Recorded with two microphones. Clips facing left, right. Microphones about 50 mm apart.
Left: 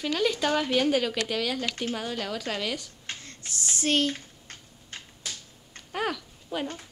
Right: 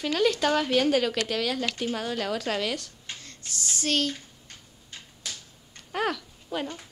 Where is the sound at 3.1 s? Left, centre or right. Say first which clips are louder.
Left 2 dB; left.